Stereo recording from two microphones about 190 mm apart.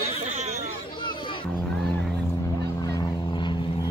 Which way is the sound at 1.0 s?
25° left (ahead or behind).